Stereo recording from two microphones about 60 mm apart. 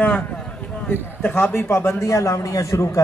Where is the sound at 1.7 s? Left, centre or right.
Left.